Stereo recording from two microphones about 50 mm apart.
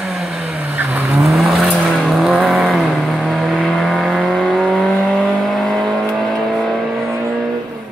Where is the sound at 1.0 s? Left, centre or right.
Centre.